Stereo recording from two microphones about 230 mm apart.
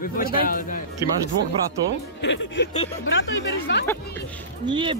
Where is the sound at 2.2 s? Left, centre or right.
Left.